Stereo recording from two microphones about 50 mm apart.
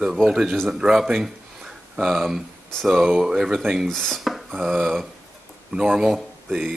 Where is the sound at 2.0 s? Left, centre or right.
Centre.